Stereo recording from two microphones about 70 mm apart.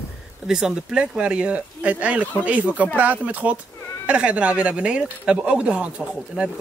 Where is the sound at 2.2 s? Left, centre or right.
Left.